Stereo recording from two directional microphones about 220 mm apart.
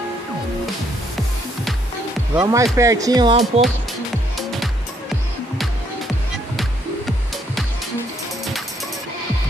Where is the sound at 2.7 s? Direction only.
15° right (ahead or behind).